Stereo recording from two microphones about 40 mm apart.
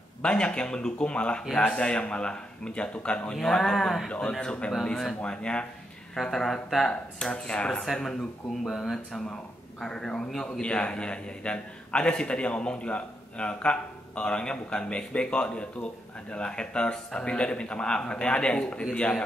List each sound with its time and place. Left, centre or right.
0.2 s a man's voice: left
3.3 s a man's voice: centre
6.3 s speech: centre
6.9 s a man's voice: left
7.9 s speech: centre
8.6 s speech: centre
9.3 s a man's voice: centre